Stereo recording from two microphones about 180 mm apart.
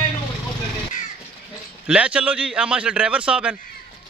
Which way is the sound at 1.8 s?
5° right (ahead or behind).